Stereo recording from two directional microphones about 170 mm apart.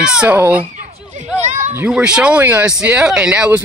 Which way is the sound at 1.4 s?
45° right (ahead or behind).